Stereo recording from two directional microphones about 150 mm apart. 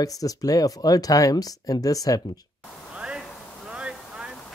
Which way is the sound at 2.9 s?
5° right (ahead or behind).